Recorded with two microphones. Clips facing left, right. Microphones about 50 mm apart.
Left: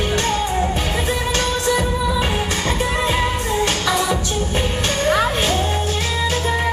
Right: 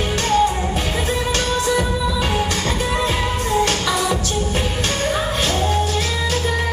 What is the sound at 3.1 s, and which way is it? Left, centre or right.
Music, centre.